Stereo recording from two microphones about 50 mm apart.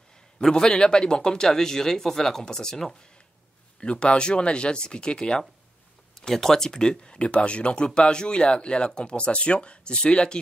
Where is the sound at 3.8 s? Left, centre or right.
Left.